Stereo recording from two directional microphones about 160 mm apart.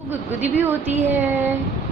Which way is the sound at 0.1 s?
10° right (ahead or behind).